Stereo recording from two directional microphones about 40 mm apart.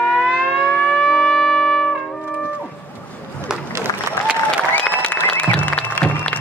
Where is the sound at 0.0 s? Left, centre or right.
Centre.